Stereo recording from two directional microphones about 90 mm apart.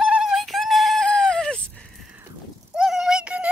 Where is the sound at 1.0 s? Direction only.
10° left (ahead or behind).